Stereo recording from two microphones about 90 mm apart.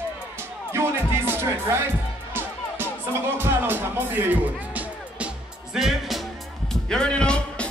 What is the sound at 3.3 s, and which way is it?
Speech, 25° right (ahead or behind).